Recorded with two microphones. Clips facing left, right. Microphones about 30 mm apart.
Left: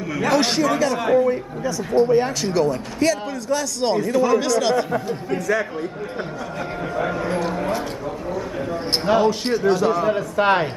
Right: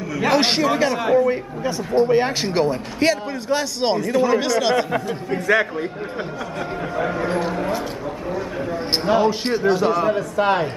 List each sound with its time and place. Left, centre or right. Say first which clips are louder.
0.2 s a man's voice: right 1 dB; right
0.9 s speech: even; centre
1.3 s a man's voice: right 1 dB; right; by 4.8 s centre
5.5 s a man's voice: right 5 dB; right
7.0 s a sound: right 1 dB; centre
9.0 s a man's voice: even; centre
9.3 s speech: even; centre
10.0 s a man's voice: even; centre
10.4 s speech: left 1 dB; centre